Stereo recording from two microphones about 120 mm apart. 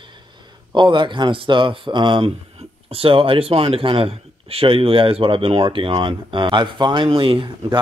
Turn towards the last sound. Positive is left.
turn(degrees=-45)  # may be behind; listen again after turning